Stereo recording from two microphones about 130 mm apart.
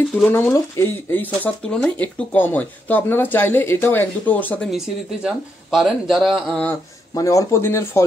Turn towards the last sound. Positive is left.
turn(degrees=20)  # may be behind; listen again after turning